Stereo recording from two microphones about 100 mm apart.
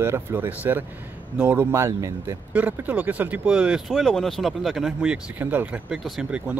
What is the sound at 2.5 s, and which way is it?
Speech, 15° right (ahead or behind).